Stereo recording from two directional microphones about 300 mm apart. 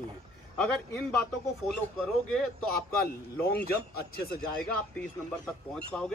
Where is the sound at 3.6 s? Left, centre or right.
Left.